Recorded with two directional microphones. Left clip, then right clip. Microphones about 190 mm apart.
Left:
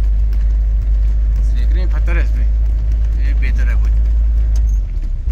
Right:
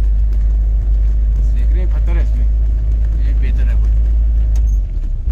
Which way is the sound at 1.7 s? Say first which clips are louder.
Left 5 dB; 10° right (ahead or behind).